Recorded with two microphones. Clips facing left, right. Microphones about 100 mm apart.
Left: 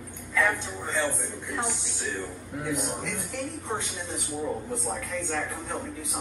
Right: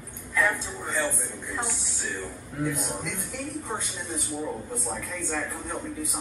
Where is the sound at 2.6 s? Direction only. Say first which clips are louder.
Left 1 dB; 15° left (ahead or behind).